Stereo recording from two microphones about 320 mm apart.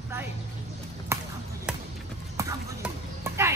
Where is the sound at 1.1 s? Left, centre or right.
Centre.